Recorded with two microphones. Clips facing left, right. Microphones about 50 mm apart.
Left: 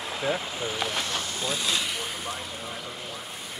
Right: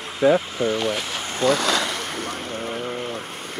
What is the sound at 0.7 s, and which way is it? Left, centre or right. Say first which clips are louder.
Speech: right 3 dB; centre.